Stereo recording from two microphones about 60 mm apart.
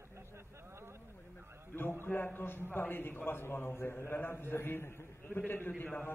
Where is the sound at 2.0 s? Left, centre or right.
Left.